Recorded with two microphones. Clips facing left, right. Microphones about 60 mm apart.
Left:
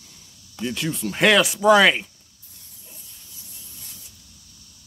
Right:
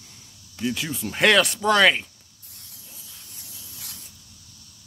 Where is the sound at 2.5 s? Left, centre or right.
Right.